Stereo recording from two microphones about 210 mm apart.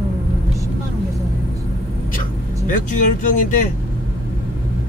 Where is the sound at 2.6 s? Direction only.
40° left (ahead or behind).